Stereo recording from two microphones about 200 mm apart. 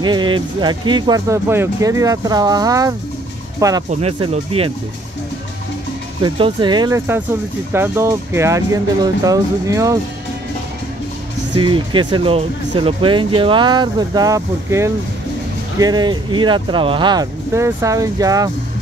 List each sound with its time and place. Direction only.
0.0 s speech: 20° right (ahead or behind)
3.9 s speech: 30° right (ahead or behind)
6.2 s speech: 25° right (ahead or behind)
11.5 s speech: 25° right (ahead or behind)